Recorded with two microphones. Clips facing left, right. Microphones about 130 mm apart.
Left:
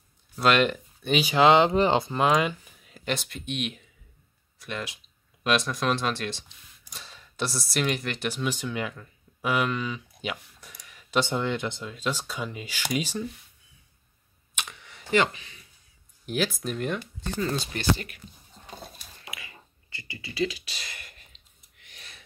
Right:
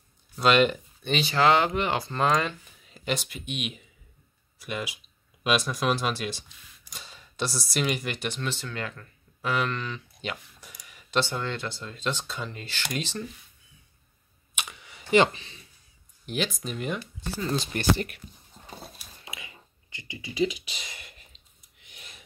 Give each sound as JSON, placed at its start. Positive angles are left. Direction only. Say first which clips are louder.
{"t": 0.4, "sound": "speech", "louder": "right 1 dB", "side_deg": 0}
{"t": 2.1, "sound": "speech", "louder": "left 2 dB", "side_deg": 10}
{"t": 8.3, "sound": "speech", "louder": "left 3 dB", "side_deg": 10}
{"t": 11.1, "sound": "speech", "louder": "left 2 dB", "side_deg": 15}
{"t": 11.9, "sound": "speech", "louder": "left 1 dB", "side_deg": 5}
{"t": 14.5, "sound": "camera", "louder": "even", "side_deg": -5}
{"t": 15.1, "sound": "speech", "louder": "right 3 dB", "side_deg": -30}
{"t": 16.3, "sound": "speech", "louder": "left 2 dB", "side_deg": 5}
{"t": 19.2, "sound": "a sound", "louder": "even", "side_deg": -20}